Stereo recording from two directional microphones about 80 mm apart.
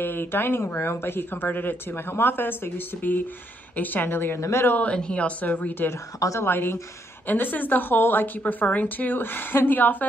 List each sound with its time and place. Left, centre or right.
0.0 s speech: left
4.7 s speech: centre
6.1 s a woman's voice: left
6.4 s speech: left